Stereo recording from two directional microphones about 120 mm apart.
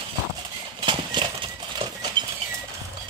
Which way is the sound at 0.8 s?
40° right (ahead or behind).